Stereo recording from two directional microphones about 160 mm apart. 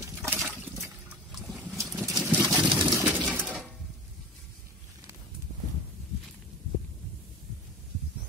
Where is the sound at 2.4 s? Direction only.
Centre (ahead or behind).